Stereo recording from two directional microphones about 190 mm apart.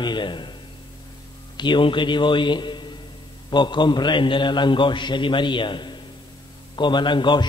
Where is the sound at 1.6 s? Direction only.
25° left (ahead or behind).